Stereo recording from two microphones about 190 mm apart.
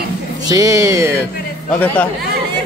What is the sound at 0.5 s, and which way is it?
Speech, 15° right (ahead or behind).